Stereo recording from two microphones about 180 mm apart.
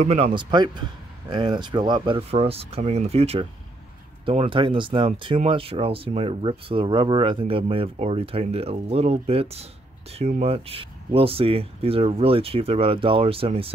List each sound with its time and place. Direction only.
0.0 s speech: 35° right (ahead or behind)